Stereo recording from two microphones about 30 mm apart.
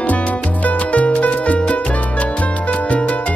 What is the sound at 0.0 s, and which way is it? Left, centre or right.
Music, left.